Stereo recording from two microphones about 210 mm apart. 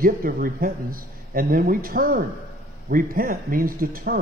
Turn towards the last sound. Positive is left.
turn(degrees=-45)  # may be behind; listen again after turning